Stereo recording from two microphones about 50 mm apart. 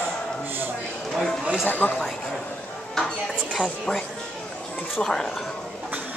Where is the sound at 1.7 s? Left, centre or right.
Left.